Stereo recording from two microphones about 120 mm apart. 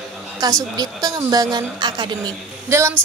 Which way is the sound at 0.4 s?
30° right (ahead or behind).